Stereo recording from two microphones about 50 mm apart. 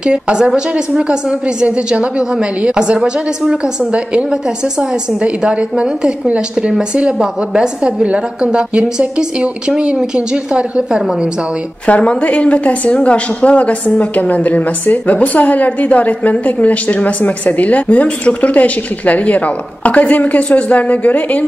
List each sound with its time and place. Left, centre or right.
0.0 s a woman's voice: centre
1.6 s a woman's voice: centre
11.8 s a woman's voice: left